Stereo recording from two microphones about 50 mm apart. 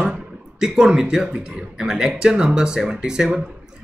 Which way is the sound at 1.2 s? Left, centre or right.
Centre.